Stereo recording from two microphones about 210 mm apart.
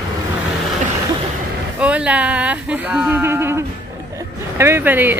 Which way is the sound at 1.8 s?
5° right (ahead or behind).